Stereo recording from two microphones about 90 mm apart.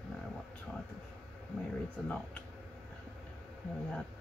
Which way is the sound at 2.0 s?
15° left (ahead or behind).